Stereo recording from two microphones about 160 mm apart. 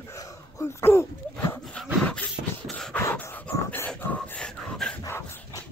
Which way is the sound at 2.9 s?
15° left (ahead or behind).